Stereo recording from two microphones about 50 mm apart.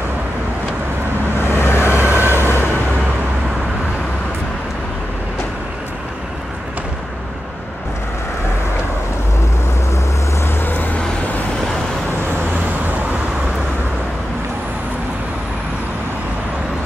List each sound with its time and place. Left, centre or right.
1.4 s vehicle: left
1.9 s vehicle: right
10.6 s vehicle: left